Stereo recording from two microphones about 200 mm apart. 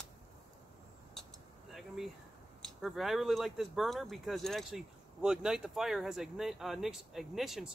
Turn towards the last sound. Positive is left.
turn(degrees=0)  # may be behind; listen again after turning